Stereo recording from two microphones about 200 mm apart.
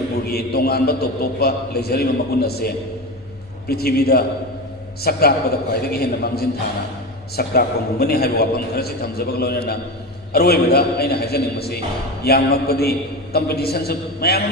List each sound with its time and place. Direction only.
0.2 s a man's voice: 50° left (ahead or behind)